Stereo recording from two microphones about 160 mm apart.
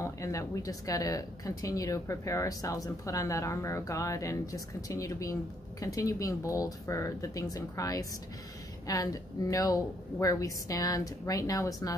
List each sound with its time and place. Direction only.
0.0 s speech: 20° left (ahead or behind)